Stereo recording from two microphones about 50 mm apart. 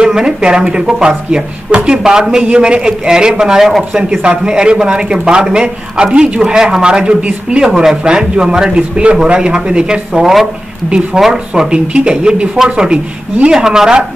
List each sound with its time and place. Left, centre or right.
0.0 s a man's voice: centre
4.2 s a man's voice: centre
7.6 s a man's voice: centre